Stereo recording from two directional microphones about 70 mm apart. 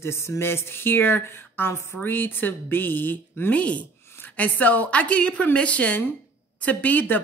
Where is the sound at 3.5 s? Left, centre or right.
Centre.